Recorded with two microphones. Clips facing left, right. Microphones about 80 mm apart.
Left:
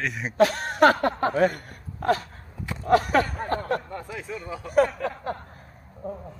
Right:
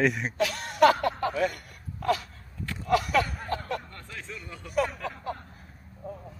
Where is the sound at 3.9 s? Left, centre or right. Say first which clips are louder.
Left 8 dB; centre.